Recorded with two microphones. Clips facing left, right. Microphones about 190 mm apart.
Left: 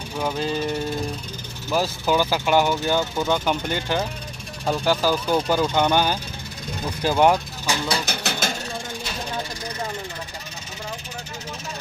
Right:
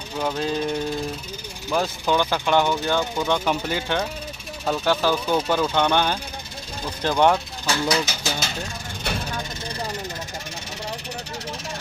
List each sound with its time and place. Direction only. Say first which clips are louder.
0.2 s vehicle: even; centre (ahead or behind)
1.7 s speech: left 1 dB; 5° left (ahead or behind)
8.0 s a sound: left 1 dB; 60° left (ahead or behind)